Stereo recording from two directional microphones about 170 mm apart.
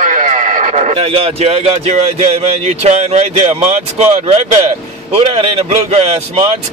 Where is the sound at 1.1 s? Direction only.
35° right (ahead or behind).